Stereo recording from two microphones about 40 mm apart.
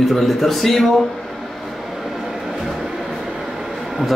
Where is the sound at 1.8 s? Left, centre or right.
Centre.